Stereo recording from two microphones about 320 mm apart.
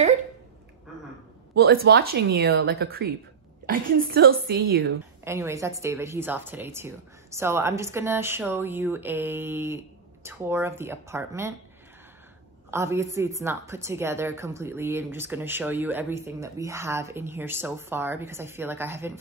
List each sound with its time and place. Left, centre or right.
1.5 s a woman's voice: right
5.2 s a woman's voice: centre
12.7 s a woman's voice: centre